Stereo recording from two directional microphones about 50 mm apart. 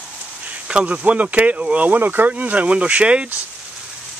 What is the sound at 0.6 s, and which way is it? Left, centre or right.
Speech, right.